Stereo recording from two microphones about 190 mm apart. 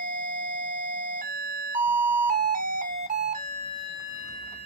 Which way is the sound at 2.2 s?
45° right (ahead or behind).